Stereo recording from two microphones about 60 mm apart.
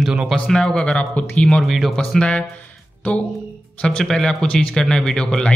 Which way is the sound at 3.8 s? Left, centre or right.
Centre.